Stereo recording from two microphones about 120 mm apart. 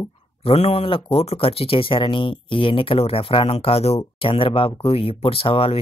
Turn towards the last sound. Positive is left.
turn(degrees=50)  # may be behind; listen again after turning